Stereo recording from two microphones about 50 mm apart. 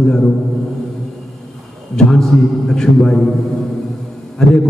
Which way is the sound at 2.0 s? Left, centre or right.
Centre.